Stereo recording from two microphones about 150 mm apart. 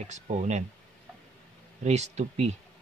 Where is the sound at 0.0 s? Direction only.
50° right (ahead or behind).